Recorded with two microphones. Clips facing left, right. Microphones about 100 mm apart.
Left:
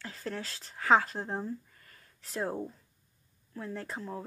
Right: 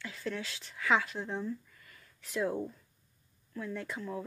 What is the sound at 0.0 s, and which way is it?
Speech, 40° left (ahead or behind).